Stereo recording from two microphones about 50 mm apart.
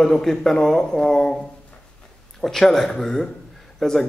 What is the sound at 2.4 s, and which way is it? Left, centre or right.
A man's voice, centre.